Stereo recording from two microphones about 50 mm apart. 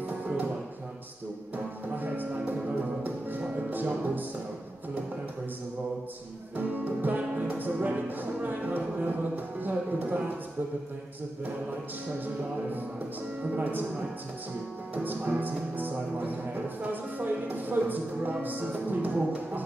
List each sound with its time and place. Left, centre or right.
2.0 s music: right
6.5 s music: right
13.4 s music: right
15.0 s music: right